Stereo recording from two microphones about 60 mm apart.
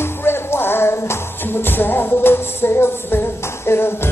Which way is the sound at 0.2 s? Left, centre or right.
Left.